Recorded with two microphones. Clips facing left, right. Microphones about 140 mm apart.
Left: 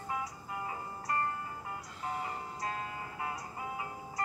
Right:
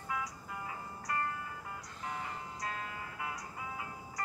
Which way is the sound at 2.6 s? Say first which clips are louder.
Left 2 dB; 30° left (ahead or behind).